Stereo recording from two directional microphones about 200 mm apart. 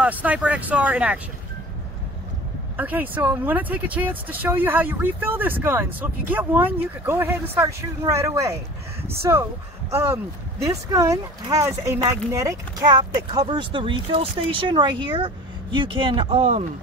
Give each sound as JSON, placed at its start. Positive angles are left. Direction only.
{"t": 0.0, "sound": "speech", "side_deg": -5}
{"t": 2.8, "sound": "speech", "side_deg": -10}